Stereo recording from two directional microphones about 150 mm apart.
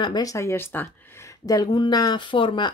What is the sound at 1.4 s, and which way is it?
Speech, 25° left (ahead or behind).